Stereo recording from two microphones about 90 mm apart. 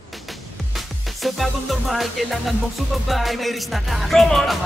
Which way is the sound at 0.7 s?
Centre (ahead or behind).